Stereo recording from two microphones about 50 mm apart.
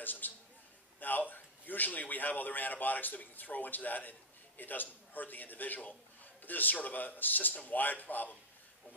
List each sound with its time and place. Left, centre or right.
0.0 s a man's voice: left